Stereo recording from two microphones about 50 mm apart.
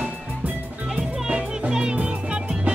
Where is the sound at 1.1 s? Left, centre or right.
Centre.